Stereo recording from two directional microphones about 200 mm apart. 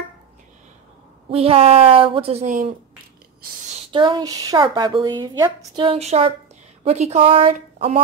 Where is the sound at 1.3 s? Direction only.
30° right (ahead or behind).